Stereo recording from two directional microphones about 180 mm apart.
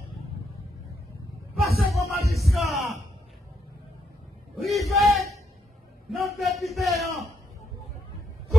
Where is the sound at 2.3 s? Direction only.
Centre (ahead or behind).